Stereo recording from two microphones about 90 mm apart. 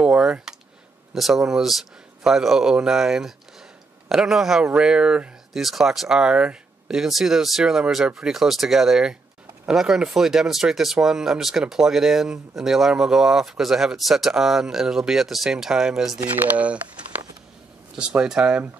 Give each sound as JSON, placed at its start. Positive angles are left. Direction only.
{"t": 0.0, "sound": "speech", "side_deg": -10}
{"t": 16.5, "sound": "speech", "side_deg": -15}